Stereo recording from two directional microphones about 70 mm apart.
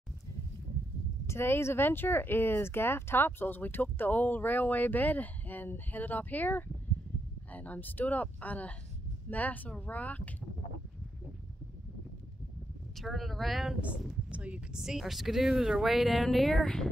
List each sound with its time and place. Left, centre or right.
1.2 s speech: left
12.9 s speech: centre
14.0 s speech: centre
14.8 s speech: centre